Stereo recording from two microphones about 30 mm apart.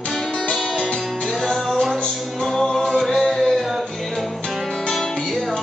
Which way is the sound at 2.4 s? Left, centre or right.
Centre.